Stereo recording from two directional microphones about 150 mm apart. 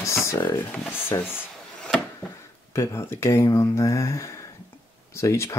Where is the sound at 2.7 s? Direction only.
20° left (ahead or behind).